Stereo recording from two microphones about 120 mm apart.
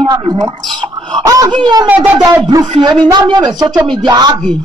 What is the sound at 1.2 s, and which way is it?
Speech, 30° right (ahead or behind).